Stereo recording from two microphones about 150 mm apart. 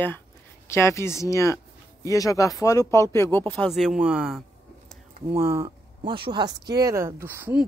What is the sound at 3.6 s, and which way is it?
Speech, centre (ahead or behind).